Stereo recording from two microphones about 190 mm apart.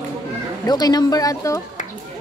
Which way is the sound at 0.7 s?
20° left (ahead or behind).